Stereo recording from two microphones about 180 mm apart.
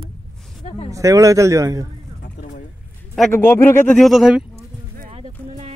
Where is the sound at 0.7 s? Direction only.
35° left (ahead or behind).